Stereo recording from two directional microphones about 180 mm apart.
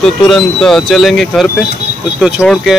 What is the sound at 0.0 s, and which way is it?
Speech, centre (ahead or behind).